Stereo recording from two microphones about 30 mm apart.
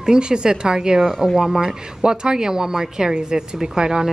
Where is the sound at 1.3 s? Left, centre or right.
Centre.